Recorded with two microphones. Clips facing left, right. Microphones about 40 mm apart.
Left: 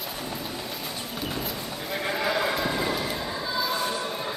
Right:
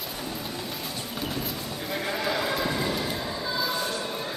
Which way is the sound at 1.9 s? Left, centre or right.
Centre.